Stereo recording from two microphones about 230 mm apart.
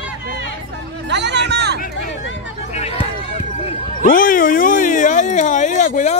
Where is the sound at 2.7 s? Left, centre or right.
Left.